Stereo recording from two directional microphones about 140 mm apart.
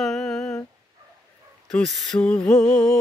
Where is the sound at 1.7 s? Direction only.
10° left (ahead or behind).